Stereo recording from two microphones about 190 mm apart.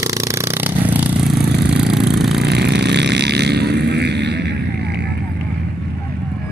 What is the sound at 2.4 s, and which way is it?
Vehicle, 60° right (ahead or behind).